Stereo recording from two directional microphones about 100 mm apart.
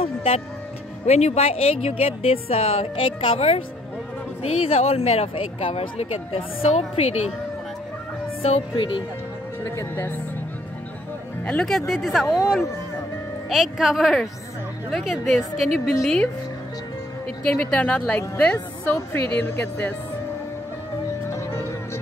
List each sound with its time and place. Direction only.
0.0 s music: 75° left (ahead or behind)
1.0 s a woman's voice: 90° left
8.4 s a woman's voice: 80° left
9.7 s speech: 25° left (ahead or behind)
11.4 s speech: 15° left (ahead or behind)
11.9 s a woman's voice: centre (ahead or behind)
13.5 s a woman's voice: 5° right (ahead or behind)
17.4 s speech: 10° left (ahead or behind)
18.9 s speech: 20° left (ahead or behind)